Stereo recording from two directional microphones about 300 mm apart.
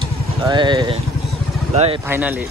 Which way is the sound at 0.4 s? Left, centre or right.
Centre.